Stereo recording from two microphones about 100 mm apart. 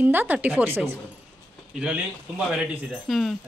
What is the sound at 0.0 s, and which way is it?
Speech, 20° right (ahead or behind).